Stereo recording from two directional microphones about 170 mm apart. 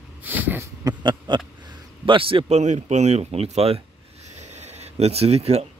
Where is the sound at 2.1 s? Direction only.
30° right (ahead or behind).